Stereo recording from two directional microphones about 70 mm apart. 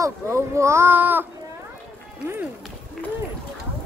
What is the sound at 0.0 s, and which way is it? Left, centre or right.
Speech, right.